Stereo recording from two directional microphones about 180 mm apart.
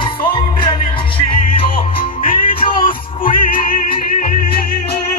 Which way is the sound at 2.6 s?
30° left (ahead or behind).